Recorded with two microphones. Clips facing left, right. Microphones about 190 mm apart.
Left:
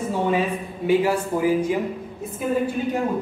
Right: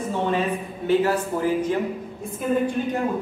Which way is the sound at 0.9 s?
10° left (ahead or behind).